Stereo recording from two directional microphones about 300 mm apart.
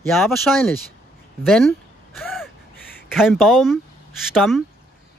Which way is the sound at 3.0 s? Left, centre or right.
Centre.